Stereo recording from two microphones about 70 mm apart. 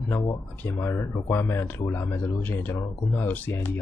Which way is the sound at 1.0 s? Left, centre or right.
Left.